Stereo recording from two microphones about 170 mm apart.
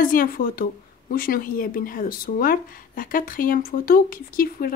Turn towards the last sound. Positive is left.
turn(degrees=60)  # may be behind; listen again after turning